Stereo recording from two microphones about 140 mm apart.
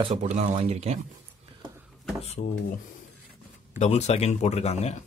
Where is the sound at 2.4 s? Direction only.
80° left.